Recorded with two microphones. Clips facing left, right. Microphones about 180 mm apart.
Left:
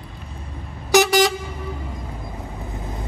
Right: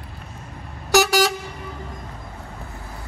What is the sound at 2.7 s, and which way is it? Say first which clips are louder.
Vehicle: left 6 dB; 20° left (ahead or behind).